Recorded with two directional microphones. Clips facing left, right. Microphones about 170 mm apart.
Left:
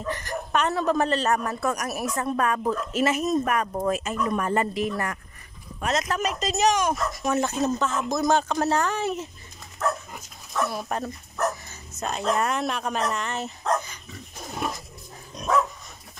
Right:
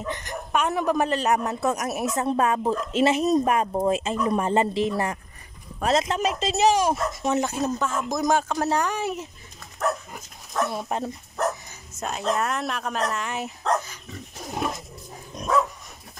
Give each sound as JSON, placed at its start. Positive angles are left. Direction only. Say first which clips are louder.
{"t": 0.0, "sound": "speech", "louder": "left 1 dB", "side_deg": -20}
{"t": 7.4, "sound": "speech", "louder": "left 1 dB", "side_deg": -10}
{"t": 10.7, "sound": "speech", "louder": "right 1 dB", "side_deg": -25}
{"t": 11.9, "sound": "speech", "louder": "even", "side_deg": -5}